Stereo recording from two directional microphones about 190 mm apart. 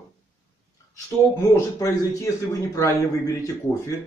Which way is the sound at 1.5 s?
15° left (ahead or behind).